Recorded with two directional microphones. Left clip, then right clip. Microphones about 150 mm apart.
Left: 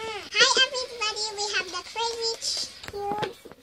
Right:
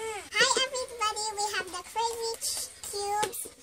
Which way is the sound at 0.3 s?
10° right (ahead or behind).